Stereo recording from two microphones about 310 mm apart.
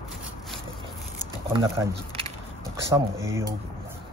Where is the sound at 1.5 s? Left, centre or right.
Centre.